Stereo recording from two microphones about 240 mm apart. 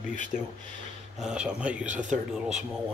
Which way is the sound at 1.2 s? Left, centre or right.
Centre.